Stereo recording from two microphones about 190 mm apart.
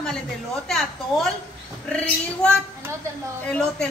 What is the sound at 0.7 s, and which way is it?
A woman's voice, centre (ahead or behind).